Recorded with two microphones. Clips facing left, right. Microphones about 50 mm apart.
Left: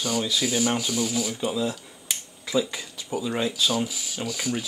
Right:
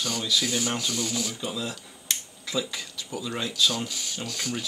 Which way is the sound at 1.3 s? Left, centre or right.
Centre.